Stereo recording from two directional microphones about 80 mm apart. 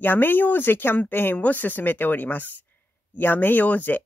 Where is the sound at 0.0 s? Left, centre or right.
Left.